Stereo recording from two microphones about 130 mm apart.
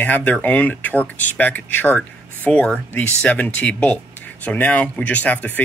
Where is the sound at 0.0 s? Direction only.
15° left (ahead or behind).